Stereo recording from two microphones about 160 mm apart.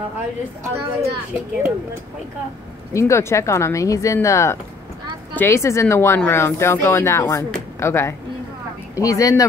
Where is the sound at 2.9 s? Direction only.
20° left (ahead or behind).